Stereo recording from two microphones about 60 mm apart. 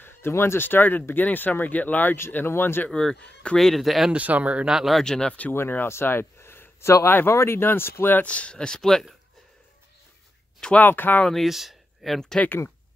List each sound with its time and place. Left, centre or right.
0.0 s a sound: left
0.3 s speech: left
2.9 s speech: centre
4.1 s speech: right
4.6 s speech: centre
4.9 s speech: centre
5.5 s speech: left
5.9 s a sound: left
7.1 s speech: left
8.2 s speech: left
10.8 s speech: left
11.4 s speech: centre
12.4 s speech: left